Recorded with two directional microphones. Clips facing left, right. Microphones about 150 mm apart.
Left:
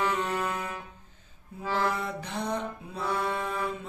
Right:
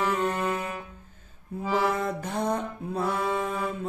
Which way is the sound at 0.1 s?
Centre (ahead or behind).